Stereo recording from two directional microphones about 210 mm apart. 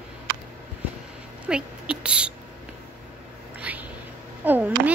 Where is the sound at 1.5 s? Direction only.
5° right (ahead or behind).